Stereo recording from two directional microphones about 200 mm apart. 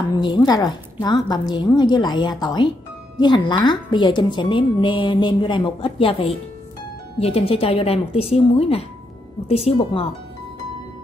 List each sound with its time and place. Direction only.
0.1 s a woman's voice: 20° left (ahead or behind)